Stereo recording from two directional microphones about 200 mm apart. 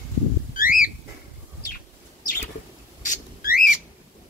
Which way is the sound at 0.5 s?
45° left (ahead or behind).